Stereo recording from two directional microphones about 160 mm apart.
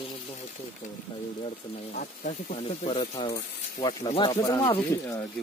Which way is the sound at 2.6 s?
40° left (ahead or behind).